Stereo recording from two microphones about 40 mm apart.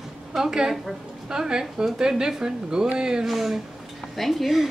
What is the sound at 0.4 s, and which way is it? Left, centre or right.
Speech, centre.